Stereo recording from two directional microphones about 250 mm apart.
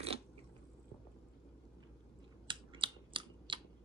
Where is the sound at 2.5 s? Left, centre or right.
Centre.